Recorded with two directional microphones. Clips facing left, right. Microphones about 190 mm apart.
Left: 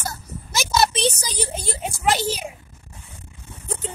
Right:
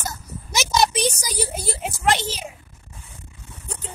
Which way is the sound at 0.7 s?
10° right (ahead or behind).